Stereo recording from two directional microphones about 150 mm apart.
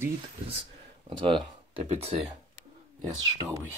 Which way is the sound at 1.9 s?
45° right (ahead or behind).